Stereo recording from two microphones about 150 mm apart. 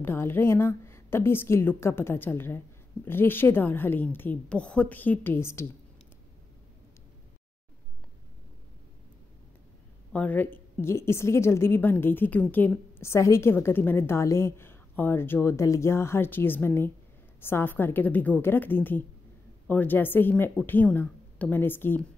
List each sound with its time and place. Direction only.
0.0 s a woman's voice: 15° left (ahead or behind)
10.1 s a woman's voice: 10° left (ahead or behind)